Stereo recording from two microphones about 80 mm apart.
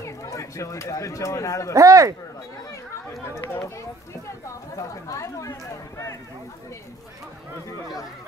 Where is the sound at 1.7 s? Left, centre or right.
Right.